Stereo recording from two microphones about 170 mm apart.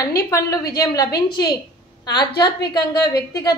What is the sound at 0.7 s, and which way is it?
A woman's voice, 20° left (ahead or behind).